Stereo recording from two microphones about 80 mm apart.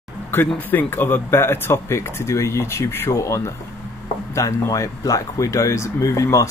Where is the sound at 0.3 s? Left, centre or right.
Left.